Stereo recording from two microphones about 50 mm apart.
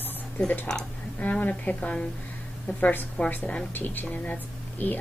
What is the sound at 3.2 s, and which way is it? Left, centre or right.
Speech, left.